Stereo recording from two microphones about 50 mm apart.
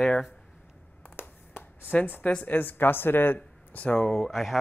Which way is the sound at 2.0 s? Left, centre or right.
Left.